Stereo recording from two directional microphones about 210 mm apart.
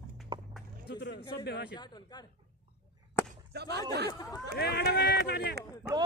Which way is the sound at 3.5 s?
50° right (ahead or behind).